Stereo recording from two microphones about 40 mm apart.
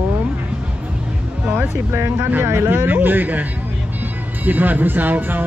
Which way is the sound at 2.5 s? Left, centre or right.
Right.